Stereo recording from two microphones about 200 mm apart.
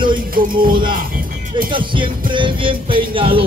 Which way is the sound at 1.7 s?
25° right (ahead or behind).